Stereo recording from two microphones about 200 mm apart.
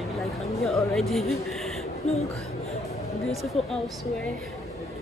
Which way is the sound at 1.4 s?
Centre (ahead or behind).